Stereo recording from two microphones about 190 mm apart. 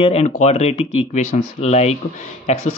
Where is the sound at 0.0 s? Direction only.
35° left (ahead or behind).